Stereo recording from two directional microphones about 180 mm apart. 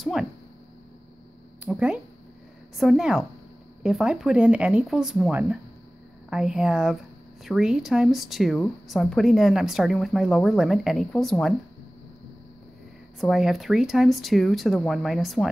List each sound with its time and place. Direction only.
0.0 s a sound: centre (ahead or behind)
1.6 s speech: 5° right (ahead or behind)
13.2 s speech: centre (ahead or behind)